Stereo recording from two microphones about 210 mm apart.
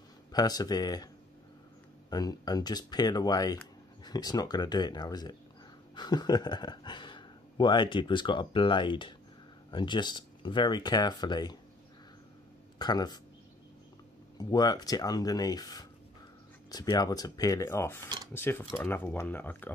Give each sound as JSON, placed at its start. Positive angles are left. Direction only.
{"t": 0.3, "sound": "speech", "side_deg": 20}
{"t": 2.0, "sound": "speech", "side_deg": 20}
{"t": 12.7, "sound": "speech", "side_deg": 20}
{"t": 14.4, "sound": "speech", "side_deg": 20}